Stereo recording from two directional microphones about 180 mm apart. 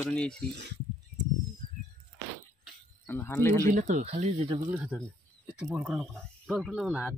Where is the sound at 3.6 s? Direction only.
45° right (ahead or behind).